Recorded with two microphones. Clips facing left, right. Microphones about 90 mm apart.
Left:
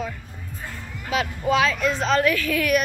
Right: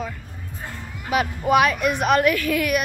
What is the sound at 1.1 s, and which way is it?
Speech, 15° right (ahead or behind).